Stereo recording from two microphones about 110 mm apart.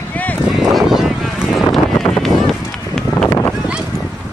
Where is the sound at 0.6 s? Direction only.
Centre (ahead or behind).